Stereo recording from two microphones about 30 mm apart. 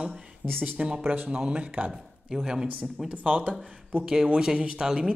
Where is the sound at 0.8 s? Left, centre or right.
Right.